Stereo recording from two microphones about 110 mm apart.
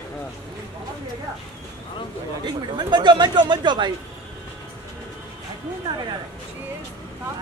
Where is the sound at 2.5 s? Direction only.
45° right (ahead or behind).